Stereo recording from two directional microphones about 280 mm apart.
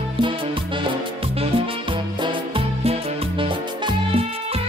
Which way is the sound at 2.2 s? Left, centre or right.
Centre.